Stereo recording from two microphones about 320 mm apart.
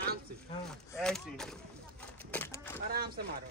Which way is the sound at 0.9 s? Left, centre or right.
Centre.